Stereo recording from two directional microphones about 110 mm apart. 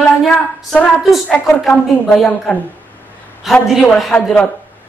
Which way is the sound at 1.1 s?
Centre (ahead or behind).